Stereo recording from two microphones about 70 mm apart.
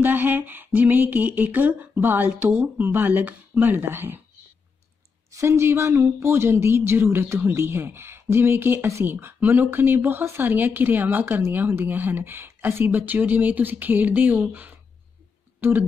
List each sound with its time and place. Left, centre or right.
0.0 s a sound: right
1.1 s speech: right
5.3 s speech: right